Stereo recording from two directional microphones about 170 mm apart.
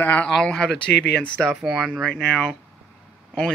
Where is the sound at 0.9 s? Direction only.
85° left.